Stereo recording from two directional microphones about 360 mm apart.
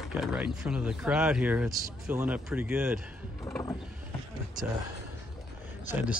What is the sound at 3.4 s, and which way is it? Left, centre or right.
Vehicle, centre.